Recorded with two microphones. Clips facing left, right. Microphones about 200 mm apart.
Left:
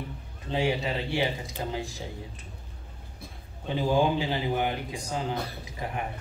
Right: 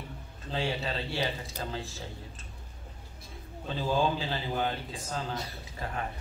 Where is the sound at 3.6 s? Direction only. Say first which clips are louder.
Left 4 dB; 15° left (ahead or behind).